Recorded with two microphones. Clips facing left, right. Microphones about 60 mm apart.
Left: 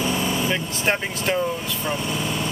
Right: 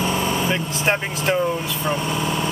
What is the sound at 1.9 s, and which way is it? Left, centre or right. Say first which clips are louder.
Speech: right 3 dB; right.